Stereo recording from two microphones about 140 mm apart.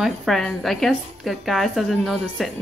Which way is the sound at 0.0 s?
Centre (ahead or behind).